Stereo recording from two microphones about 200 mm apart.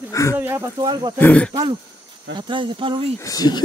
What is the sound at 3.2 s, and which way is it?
Speech, 20° left (ahead or behind).